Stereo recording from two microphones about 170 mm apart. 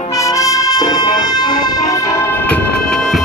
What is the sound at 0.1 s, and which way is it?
Music, 20° left (ahead or behind).